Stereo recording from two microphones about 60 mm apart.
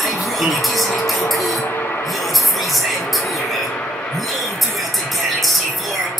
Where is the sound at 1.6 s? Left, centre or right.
Left.